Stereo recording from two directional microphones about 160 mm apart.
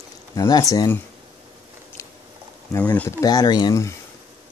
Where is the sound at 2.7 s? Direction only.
10° left (ahead or behind).